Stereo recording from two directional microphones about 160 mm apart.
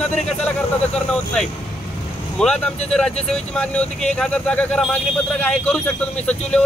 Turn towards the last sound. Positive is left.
turn(degrees=5)  # may be behind; listen again after turning